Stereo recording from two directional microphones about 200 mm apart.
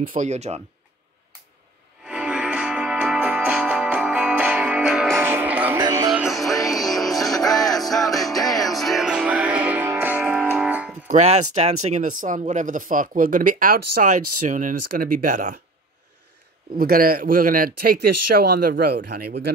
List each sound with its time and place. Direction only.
0.0 s speech: 40° right (ahead or behind)
2.0 s music: 5° right (ahead or behind)
5.8 s music: 20° right (ahead or behind)
6.1 s music: centre (ahead or behind)
11.1 s speech: 35° right (ahead or behind)
16.7 s speech: 45° right (ahead or behind)